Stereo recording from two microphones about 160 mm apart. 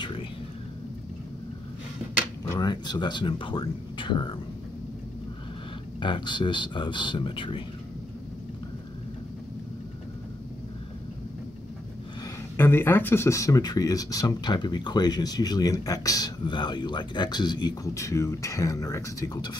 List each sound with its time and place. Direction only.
2.5 s speech: 25° left (ahead or behind)
5.9 s speech: 30° left (ahead or behind)
12.5 s speech: 15° left (ahead or behind)